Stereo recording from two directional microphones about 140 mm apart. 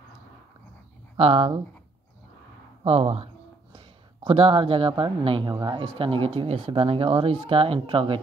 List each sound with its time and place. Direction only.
1.1 s speech: 45° right (ahead or behind)
2.8 s speech: 45° right (ahead or behind)